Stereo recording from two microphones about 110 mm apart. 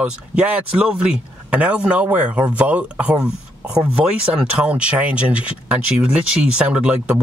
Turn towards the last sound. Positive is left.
turn(degrees=-10)  # may be behind; listen again after turning